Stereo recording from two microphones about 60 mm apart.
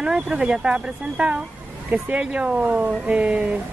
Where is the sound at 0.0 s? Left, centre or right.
Centre.